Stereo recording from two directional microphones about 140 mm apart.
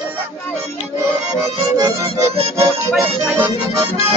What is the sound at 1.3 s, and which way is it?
Music, 25° right (ahead or behind).